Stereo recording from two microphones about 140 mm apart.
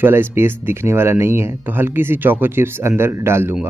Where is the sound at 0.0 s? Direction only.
15° right (ahead or behind).